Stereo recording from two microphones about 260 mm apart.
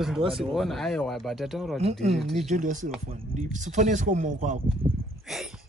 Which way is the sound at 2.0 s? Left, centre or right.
Right.